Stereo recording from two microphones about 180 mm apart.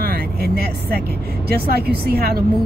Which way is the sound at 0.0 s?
60° right (ahead or behind).